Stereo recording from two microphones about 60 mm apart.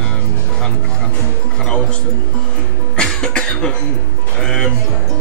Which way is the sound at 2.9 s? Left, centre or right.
Centre.